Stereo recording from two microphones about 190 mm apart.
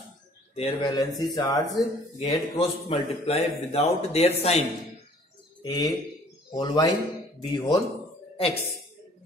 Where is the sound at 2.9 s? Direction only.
35° left (ahead or behind).